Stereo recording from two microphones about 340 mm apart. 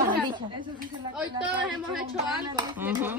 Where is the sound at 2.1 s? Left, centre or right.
Centre.